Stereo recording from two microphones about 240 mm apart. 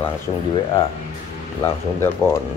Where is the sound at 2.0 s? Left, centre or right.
Centre.